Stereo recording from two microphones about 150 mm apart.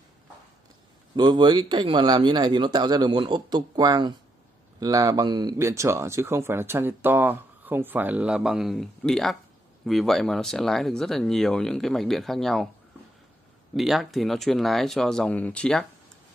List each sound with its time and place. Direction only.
1.1 s speech: 30° right (ahead or behind); by 12.6 s centre (ahead or behind)
13.7 s speech: centre (ahead or behind)